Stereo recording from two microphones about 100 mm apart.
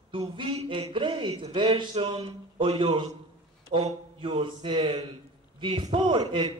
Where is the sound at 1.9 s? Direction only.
60° right (ahead or behind).